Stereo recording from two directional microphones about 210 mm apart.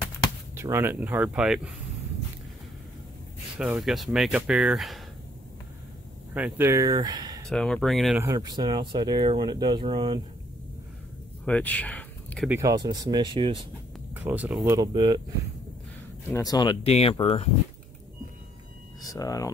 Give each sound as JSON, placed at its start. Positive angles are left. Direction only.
{"t": 0.6, "sound": "speech", "side_deg": -10}
{"t": 3.5, "sound": "speech", "side_deg": -5}
{"t": 6.3, "sound": "speech", "side_deg": -10}
{"t": 7.4, "sound": "speech", "side_deg": 5}
{"t": 8.2, "sound": "speech", "side_deg": -15}
{"t": 11.4, "sound": "speech", "side_deg": 5}
{"t": 12.4, "sound": "speech", "side_deg": -15}
{"t": 14.1, "sound": "speech", "side_deg": -10}
{"t": 14.6, "sound": "speech", "side_deg": -20}
{"t": 16.3, "sound": "speech", "side_deg": 15}
{"t": 19.0, "sound": "speech", "side_deg": 15}